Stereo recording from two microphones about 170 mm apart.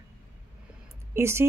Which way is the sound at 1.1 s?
15° right (ahead or behind).